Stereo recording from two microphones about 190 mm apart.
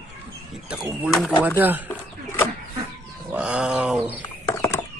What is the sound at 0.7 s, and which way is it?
A man's voice, 5° right (ahead or behind).